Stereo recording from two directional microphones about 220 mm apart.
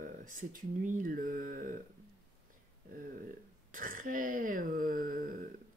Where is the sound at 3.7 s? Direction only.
40° right (ahead or behind).